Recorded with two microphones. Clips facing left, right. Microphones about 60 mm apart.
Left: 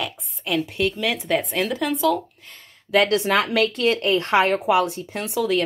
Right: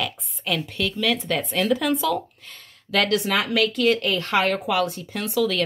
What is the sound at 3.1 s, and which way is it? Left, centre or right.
Speech, left.